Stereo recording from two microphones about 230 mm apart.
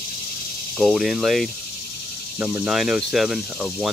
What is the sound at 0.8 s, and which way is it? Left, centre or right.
Speech, centre.